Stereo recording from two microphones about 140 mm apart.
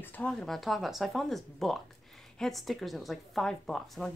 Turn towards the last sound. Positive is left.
turn(degrees=0)  # may be behind; listen again after turning